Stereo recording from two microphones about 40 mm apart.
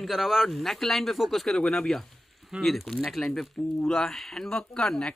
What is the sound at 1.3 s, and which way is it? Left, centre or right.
Speech, centre.